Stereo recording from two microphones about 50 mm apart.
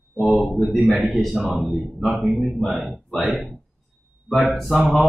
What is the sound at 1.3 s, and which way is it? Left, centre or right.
A man's voice, centre.